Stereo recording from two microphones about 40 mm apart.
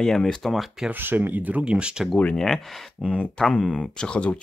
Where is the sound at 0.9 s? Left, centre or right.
Right.